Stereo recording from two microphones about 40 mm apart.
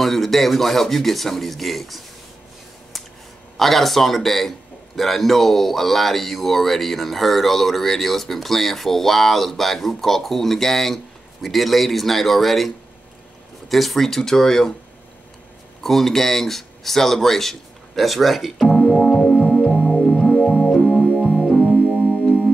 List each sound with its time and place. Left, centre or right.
0.0 s a man's voice: centre
3.5 s a man's voice: centre
15.8 s a man's voice: centre
18.7 s music: left